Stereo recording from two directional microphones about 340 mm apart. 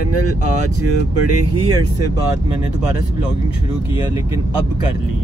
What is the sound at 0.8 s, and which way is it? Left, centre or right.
Speech, right.